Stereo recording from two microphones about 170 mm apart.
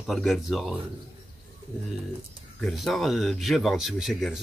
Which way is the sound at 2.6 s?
Centre (ahead or behind).